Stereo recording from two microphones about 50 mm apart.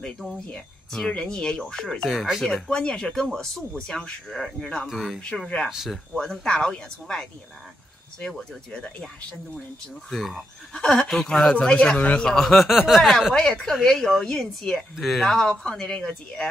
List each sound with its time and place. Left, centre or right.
0.9 s a woman's voice: centre
2.0 s speech: centre
2.4 s a woman's voice: centre
2.8 s a woman's voice: centre
4.9 s speech: centre
5.7 s speech: centre
6.1 s a woman's voice: centre
8.7 s a woman's voice: centre
10.0 s a woman's voice: centre
11.6 s speech: centre
12.3 s speech: centre
13.3 s a woman's voice: centre
15.0 s speech: centre
15.2 s a woman's voice: centre